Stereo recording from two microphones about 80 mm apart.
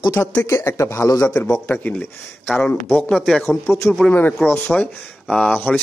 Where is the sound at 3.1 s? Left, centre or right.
Centre.